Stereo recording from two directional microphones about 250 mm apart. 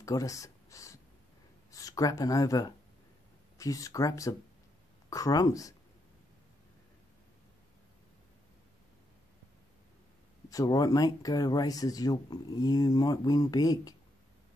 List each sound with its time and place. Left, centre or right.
0.0 s speech: centre
10.5 s speech: centre